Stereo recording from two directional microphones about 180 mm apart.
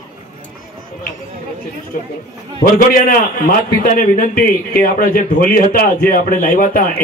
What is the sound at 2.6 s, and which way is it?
A man's voice, 50° left (ahead or behind).